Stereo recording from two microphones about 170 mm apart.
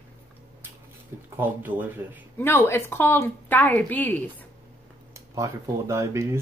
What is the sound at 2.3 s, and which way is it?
Speech, 15° left (ahead or behind).